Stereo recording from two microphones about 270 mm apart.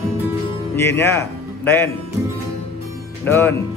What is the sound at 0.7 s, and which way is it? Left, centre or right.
Speech, centre.